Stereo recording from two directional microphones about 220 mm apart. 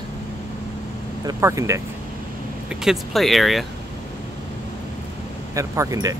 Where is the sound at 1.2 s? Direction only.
15° right (ahead or behind).